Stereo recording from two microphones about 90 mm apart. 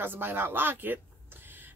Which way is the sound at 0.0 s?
25° right (ahead or behind).